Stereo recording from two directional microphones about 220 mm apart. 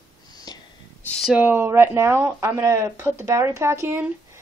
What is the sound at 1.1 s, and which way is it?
Speech, centre (ahead or behind).